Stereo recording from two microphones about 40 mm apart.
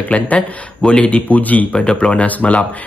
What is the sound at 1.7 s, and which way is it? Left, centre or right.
Speech, left.